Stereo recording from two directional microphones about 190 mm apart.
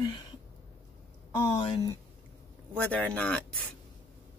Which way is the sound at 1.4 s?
25° left (ahead or behind).